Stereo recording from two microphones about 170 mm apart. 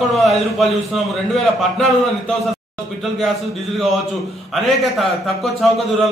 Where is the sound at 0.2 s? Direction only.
Centre (ahead or behind).